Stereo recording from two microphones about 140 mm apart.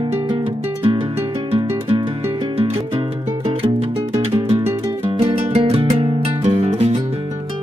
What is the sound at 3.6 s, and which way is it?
Music, 45° right (ahead or behind).